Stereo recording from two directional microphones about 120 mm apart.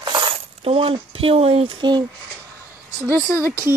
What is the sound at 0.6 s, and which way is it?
Speech, 50° right (ahead or behind).